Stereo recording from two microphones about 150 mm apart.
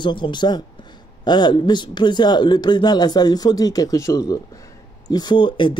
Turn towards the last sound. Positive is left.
turn(degrees=35)  # may be behind; listen again after turning